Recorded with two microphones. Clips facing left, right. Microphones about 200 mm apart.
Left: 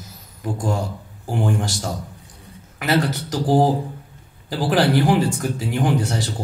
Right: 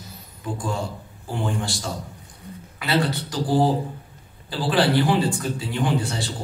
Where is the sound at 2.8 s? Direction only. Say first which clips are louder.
Left 3 dB; 45° left (ahead or behind).